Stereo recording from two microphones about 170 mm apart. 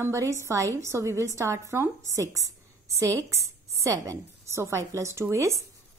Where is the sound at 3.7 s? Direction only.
20° right (ahead or behind).